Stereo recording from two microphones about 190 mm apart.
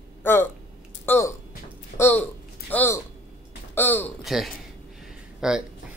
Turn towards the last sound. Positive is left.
turn(degrees=-5)  # may be behind; listen again after turning